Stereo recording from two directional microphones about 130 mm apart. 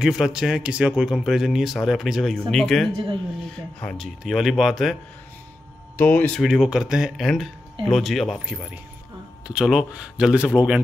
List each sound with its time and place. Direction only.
0.0 s speech: 5° right (ahead or behind)
5.9 s speech: 15° left (ahead or behind)
6.3 s speech: 5° right (ahead or behind)